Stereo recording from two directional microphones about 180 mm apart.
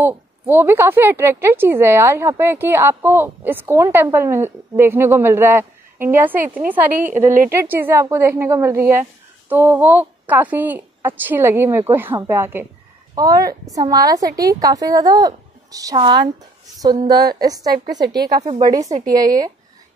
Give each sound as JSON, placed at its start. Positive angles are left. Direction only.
{"t": 0.0, "sound": "a woman's voice", "side_deg": -10}
{"t": 7.2, "sound": "speech", "side_deg": -45}
{"t": 7.5, "sound": "a woman's voice", "side_deg": -10}
{"t": 17.7, "sound": "a woman's voice", "side_deg": -60}
{"t": 18.6, "sound": "a woman's voice", "side_deg": -20}